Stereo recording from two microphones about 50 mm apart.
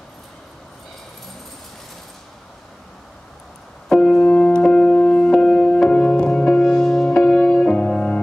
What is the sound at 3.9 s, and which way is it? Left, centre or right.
Music, centre.